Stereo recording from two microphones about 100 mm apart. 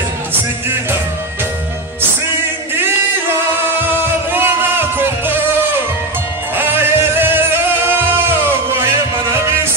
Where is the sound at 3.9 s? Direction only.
20° right (ahead or behind).